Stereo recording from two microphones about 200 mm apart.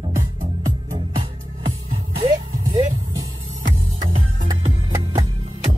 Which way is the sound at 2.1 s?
25° right (ahead or behind).